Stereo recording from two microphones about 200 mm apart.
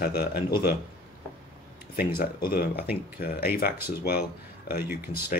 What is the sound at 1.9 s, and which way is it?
Speech, 50° left (ahead or behind).